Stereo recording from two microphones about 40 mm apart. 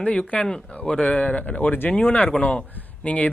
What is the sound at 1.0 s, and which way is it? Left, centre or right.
Speech, left.